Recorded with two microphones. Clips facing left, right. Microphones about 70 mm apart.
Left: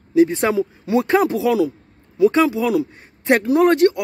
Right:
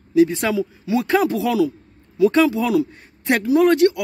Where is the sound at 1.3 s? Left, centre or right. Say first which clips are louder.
Left 1 dB; centre.